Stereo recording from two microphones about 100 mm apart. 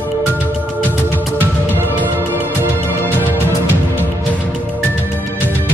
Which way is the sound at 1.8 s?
20° right (ahead or behind).